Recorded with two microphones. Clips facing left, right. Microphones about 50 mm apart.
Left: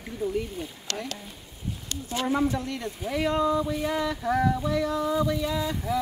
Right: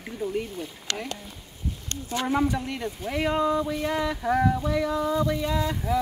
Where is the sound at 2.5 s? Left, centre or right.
Centre.